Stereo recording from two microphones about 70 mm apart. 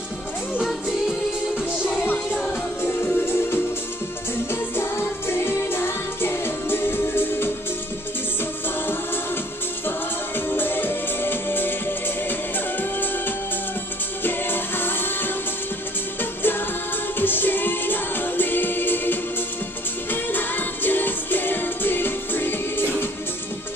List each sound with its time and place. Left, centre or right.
0.7 s music: centre
2.8 s music: left
9.8 s music: left
14.2 s music: left